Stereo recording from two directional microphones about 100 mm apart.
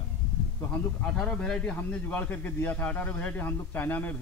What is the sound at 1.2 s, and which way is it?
A man's voice, 5° left (ahead or behind).